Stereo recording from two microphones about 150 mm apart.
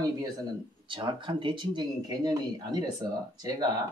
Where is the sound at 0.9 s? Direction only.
35° right (ahead or behind).